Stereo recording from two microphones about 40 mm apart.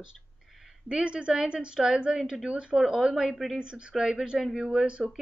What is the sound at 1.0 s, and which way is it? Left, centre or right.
Speech, right.